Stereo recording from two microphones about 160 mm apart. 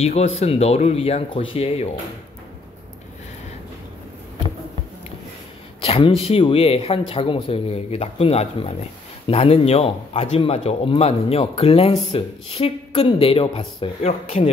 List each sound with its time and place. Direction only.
0.0 s speech: 40° left (ahead or behind)
5.8 s speech: 35° left (ahead or behind)